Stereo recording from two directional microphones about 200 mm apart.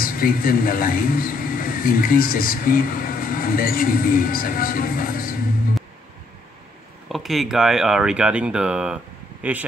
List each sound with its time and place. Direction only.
0.0 s speech: 45° left (ahead or behind)
7.1 s speech: centre (ahead or behind)